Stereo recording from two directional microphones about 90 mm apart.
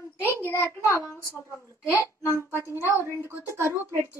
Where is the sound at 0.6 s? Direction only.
30° left (ahead or behind).